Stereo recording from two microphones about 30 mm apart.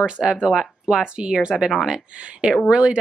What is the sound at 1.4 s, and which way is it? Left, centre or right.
Speech, right.